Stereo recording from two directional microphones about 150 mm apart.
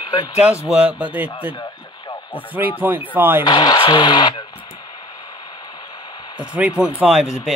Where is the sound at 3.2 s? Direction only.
15° right (ahead or behind).